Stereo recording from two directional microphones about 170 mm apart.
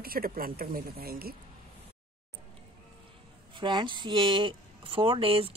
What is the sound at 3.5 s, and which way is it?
Speech, 30° right (ahead or behind).